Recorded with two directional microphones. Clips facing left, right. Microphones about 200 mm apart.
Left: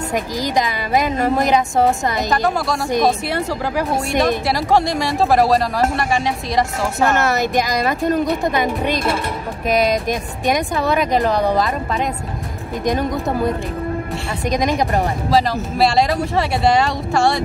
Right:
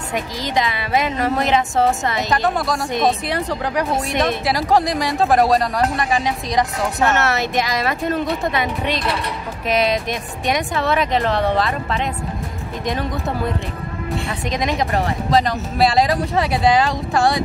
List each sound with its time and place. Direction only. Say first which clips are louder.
1.9 s speech: left 1 dB; centre (ahead or behind)
8.5 s speech: left 3 dB; 45° left (ahead or behind)
15.2 s speech: left 1 dB; centre (ahead or behind)